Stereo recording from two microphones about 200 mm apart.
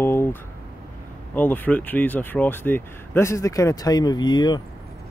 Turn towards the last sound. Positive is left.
turn(degrees=20)  # may be behind; listen again after turning